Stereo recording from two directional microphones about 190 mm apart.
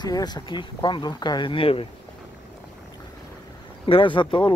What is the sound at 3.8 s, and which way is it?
Speech, 25° left (ahead or behind).